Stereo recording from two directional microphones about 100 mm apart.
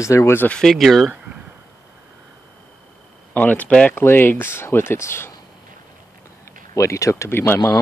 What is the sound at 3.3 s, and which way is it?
Speech, 15° left (ahead or behind).